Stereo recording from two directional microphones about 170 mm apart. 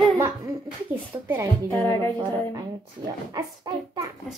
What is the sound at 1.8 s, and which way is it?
Music, 15° left (ahead or behind).